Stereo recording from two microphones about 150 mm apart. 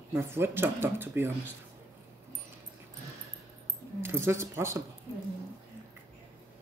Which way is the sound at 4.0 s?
15° right (ahead or behind).